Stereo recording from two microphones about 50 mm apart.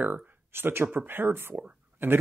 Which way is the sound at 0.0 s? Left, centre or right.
Right.